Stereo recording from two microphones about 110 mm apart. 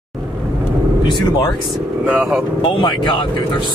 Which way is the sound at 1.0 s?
40° left (ahead or behind).